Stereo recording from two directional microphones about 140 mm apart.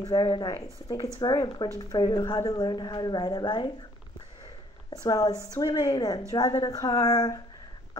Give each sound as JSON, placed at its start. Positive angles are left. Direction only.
{"t": 0.0, "sound": "a woman's voice", "side_deg": 30}
{"t": 5.0, "sound": "a woman's voice", "side_deg": 30}